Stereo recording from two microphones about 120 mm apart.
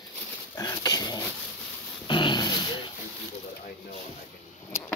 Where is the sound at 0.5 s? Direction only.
30° left (ahead or behind).